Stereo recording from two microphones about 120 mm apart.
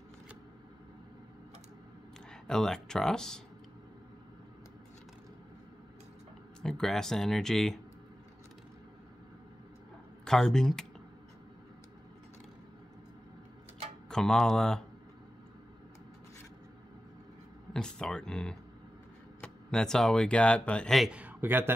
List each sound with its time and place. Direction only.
2.4 s speech: 5° left (ahead or behind)
6.6 s speech: 5° left (ahead or behind)
10.2 s speech: 5° left (ahead or behind)
14.0 s speech: 5° left (ahead or behind)
17.7 s speech: 5° left (ahead or behind)
21.1 s a man's voice: 15° right (ahead or behind)